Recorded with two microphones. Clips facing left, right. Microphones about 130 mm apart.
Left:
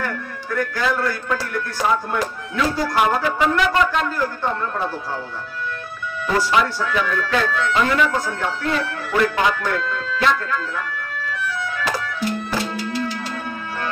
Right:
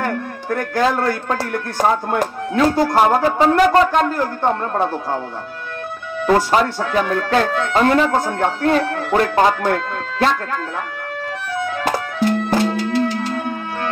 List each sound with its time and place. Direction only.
0.0 s a sound: 50° right (ahead or behind)
0.9 s speech: 45° right (ahead or behind)
6.5 s speech: 45° right (ahead or behind)
11.8 s music: 50° right (ahead or behind)